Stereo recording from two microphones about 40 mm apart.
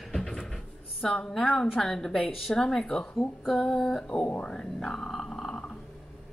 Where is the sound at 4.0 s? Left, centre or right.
Left.